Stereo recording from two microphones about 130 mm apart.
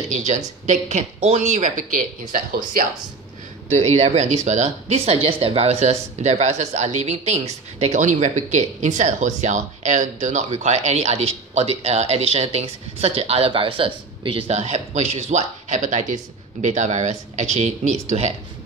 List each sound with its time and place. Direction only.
0.1 s a woman's voice: 65° right (ahead or behind); by 2.0 s 85° right
3.6 s speech: 60° right (ahead or behind); by 14.4 s 40° right (ahead or behind)
14.5 s speech: 60° right (ahead or behind)